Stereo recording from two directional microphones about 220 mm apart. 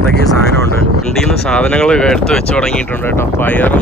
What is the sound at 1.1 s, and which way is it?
Speech, centre (ahead or behind).